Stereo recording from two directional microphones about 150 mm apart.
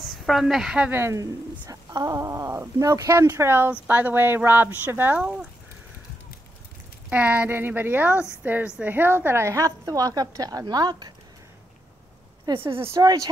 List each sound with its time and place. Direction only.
0.0 s a woman's voice: centre (ahead or behind)
7.1 s a woman's voice: 10° right (ahead or behind); by 11.1 s 30° right (ahead or behind)
12.7 s a woman's voice: 20° right (ahead or behind)